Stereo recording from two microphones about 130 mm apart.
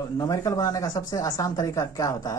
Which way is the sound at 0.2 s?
30° left (ahead or behind).